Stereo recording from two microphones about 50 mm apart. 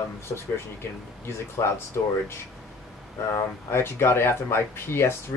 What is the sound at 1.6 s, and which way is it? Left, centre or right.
Speech, left.